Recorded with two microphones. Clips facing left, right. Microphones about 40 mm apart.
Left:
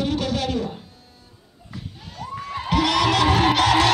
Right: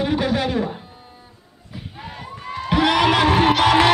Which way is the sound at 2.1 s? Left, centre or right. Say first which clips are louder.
Left 2 dB; right.